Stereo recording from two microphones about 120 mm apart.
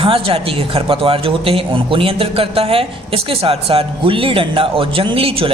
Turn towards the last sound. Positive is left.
turn(degrees=-50)  # may be behind; listen again after turning